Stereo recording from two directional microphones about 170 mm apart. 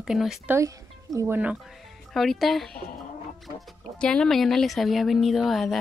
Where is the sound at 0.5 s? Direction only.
20° right (ahead or behind).